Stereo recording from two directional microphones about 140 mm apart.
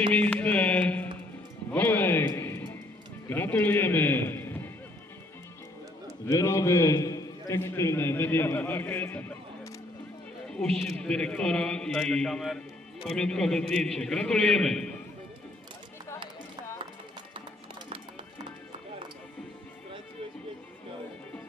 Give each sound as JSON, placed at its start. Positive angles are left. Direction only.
{"t": 0.1, "sound": "speech", "side_deg": 10}
{"t": 1.7, "sound": "music", "side_deg": 15}
{"t": 3.3, "sound": "a man's voice", "side_deg": 15}
{"t": 6.2, "sound": "a man's voice", "side_deg": 25}
{"t": 10.5, "sound": "a man's voice", "side_deg": 5}